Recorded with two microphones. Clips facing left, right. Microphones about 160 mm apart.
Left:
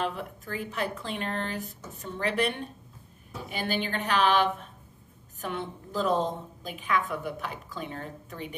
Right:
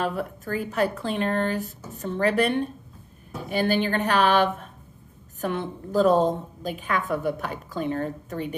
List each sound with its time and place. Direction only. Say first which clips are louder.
0.0 s a woman's voice: right 5 dB; 45° right (ahead or behind)